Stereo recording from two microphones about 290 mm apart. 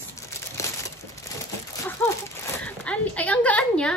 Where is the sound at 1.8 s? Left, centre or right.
Centre.